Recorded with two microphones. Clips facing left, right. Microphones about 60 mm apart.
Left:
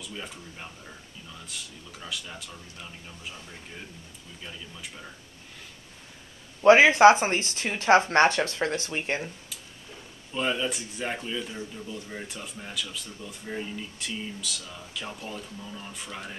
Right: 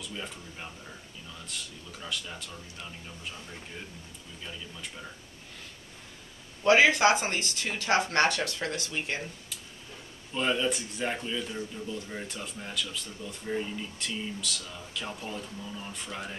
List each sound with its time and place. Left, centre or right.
0.0 s speech: centre
6.6 s speech: left
10.3 s speech: centre